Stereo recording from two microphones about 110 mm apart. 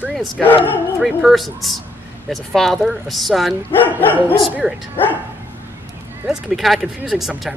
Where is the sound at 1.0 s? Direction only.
Centre (ahead or behind).